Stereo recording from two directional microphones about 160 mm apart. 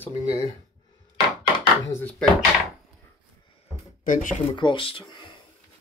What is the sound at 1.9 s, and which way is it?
Speech, 10° left (ahead or behind).